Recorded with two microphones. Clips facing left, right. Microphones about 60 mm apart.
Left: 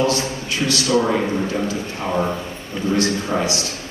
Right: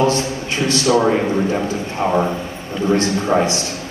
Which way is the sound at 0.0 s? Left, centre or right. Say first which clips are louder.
Right 3 dB; right.